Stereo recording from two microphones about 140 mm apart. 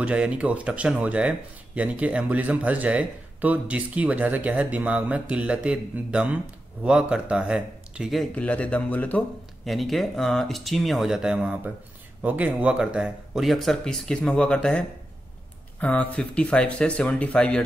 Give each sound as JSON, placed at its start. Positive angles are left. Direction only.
{"t": 0.0, "sound": "speech", "side_deg": -10}
{"t": 9.7, "sound": "speech", "side_deg": 0}